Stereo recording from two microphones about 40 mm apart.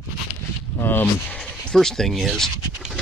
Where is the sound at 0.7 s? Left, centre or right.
Left.